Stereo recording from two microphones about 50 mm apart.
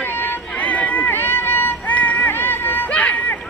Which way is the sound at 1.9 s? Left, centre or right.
Left.